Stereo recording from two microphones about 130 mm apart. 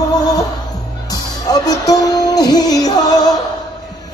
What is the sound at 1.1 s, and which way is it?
Music, 30° left (ahead or behind).